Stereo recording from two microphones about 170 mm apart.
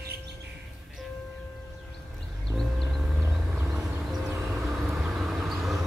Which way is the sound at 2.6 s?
Centre (ahead or behind).